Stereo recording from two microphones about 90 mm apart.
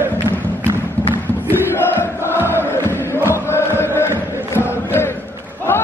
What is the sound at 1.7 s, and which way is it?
Crowd, 25° left (ahead or behind).